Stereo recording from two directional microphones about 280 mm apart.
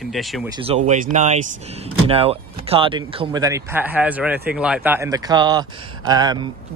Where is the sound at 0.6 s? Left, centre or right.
Right.